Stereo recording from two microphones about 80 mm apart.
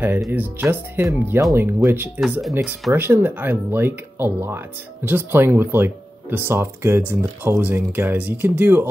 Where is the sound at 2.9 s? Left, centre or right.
Right.